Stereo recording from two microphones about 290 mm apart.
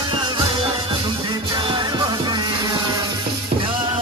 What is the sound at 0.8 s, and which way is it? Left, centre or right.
Music, centre.